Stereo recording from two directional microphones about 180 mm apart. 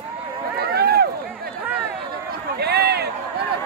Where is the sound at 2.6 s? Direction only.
65° right (ahead or behind).